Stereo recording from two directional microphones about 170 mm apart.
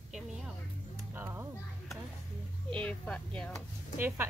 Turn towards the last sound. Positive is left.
turn(degrees=-10)  # may be behind; listen again after turning